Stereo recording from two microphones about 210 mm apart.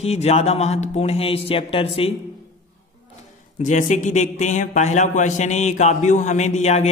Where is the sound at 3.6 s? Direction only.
35° left (ahead or behind).